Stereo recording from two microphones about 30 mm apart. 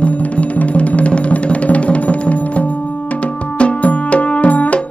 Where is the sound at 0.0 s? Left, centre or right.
Left.